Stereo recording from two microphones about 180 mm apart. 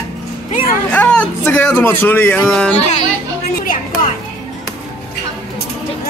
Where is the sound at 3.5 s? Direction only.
50° left (ahead or behind).